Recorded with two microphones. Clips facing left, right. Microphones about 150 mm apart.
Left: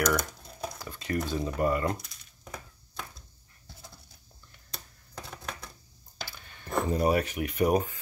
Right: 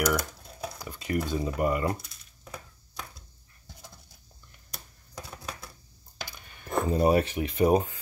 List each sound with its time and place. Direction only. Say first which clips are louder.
0.0 s speech: even; 10° right (ahead or behind)
4.6 s computer keyboard: left 1 dB; 10° right (ahead or behind)
6.2 s a sound: right 1 dB; 15° right (ahead or behind)
6.9 s speech: right 4 dB; 25° right (ahead or behind)